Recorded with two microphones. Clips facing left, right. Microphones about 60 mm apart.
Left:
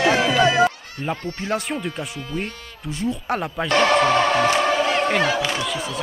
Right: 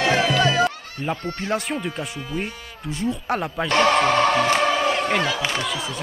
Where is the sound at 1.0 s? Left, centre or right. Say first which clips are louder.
Even; centre.